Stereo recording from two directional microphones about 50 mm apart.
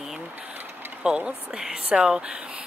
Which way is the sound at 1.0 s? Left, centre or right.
Centre.